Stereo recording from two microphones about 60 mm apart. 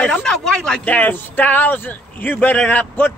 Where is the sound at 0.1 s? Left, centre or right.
Centre.